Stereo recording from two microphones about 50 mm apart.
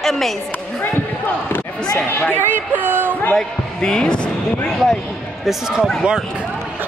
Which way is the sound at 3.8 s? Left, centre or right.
Centre.